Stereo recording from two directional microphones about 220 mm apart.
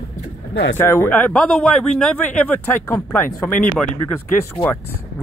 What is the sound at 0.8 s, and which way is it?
Speech, 10° left (ahead or behind).